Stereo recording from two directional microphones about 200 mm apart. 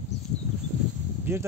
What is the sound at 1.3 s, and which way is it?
Speech, 10° right (ahead or behind).